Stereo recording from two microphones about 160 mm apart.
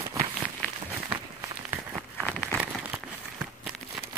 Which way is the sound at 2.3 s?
10° right (ahead or behind).